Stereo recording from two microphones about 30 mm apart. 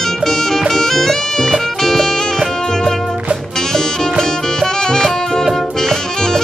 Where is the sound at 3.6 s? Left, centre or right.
Centre.